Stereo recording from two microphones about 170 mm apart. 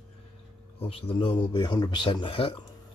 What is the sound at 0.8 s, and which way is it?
Speech, 30° left (ahead or behind).